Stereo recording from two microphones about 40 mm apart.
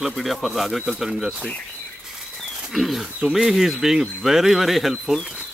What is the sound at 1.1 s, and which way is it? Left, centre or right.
Speech, centre.